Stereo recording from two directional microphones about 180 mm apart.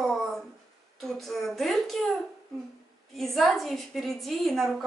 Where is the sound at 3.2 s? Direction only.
Centre (ahead or behind).